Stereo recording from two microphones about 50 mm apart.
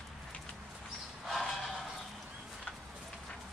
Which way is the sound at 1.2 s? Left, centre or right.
Centre.